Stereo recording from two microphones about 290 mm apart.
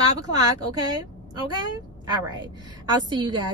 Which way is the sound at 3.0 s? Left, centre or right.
Centre.